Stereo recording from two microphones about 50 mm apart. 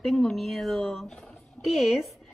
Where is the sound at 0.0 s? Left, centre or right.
Centre.